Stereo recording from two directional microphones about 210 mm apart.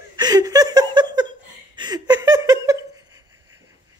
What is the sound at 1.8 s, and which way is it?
Laughter, 20° right (ahead or behind).